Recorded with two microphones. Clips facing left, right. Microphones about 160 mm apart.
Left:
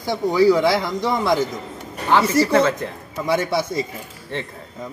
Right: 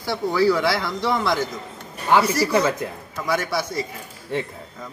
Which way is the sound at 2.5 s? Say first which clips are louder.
Left 3 dB; 10° right (ahead or behind).